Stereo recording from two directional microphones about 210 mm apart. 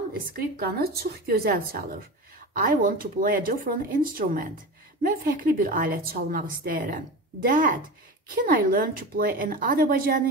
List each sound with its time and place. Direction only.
0.1 s a woman's voice: 45° right (ahead or behind)